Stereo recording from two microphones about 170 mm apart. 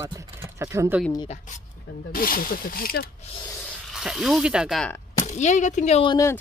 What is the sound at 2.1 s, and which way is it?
Speech, 55° left (ahead or behind).